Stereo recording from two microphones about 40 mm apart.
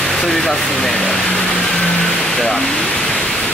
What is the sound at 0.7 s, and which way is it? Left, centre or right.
Speech, centre.